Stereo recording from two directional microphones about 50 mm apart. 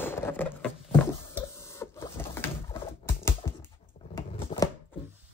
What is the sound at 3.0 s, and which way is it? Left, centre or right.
Typing, left.